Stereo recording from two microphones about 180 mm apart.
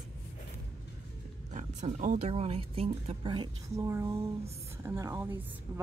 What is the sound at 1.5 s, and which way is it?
Speech, 45° right (ahead or behind).